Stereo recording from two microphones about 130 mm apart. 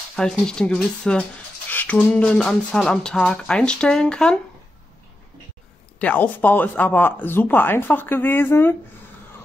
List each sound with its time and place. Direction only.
0.1 s speech: 5° left (ahead or behind)
5.9 s speech: 10° left (ahead or behind)